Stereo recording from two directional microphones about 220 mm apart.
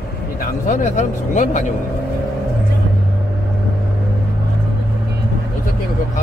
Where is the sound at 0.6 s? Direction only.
35° left (ahead or behind).